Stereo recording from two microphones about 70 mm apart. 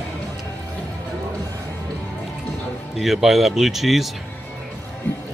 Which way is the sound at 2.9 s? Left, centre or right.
Centre.